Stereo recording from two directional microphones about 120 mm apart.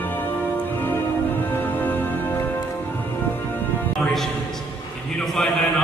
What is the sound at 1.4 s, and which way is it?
Music, 15° left (ahead or behind).